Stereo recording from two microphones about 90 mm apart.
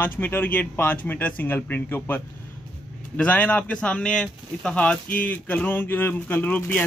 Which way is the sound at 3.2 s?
15° left (ahead or behind).